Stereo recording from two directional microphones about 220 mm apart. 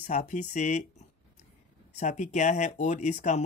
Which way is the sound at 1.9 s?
35° left (ahead or behind).